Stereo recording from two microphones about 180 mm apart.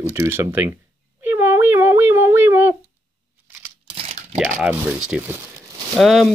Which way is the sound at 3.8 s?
35° right (ahead or behind).